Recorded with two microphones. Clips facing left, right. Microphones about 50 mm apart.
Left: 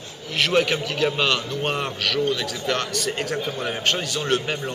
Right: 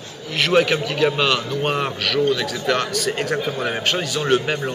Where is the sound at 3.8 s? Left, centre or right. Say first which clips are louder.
Right 2 dB; centre.